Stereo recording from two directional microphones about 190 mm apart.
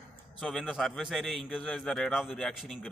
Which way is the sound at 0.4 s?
Centre (ahead or behind).